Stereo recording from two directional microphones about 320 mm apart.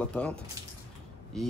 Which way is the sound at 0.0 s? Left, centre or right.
Centre.